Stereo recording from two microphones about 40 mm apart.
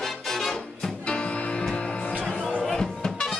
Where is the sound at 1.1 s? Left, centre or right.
Left; by 3.4 s centre.